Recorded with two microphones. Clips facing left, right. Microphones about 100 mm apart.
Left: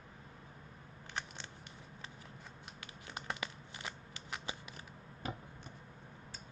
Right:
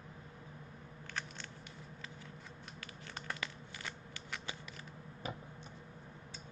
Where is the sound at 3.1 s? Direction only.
20° left (ahead or behind).